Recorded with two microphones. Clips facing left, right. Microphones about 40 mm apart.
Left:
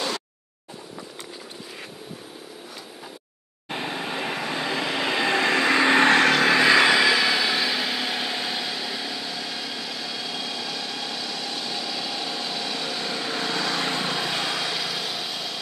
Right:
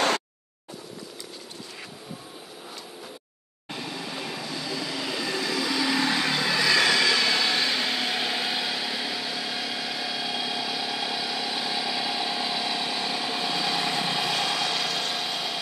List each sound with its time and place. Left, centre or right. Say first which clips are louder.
3.7 s vehicle: left 5 dB; left
6.6 s vehicle: left 2 dB; left; by 15.6 s centre